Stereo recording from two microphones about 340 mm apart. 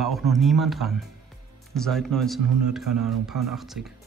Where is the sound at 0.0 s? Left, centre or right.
Centre.